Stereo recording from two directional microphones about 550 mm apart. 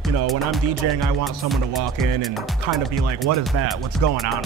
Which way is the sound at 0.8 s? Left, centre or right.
Right.